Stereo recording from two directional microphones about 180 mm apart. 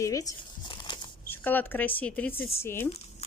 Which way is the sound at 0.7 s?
25° left (ahead or behind).